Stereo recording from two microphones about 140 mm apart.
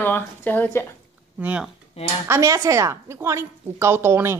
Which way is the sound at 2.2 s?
20° right (ahead or behind).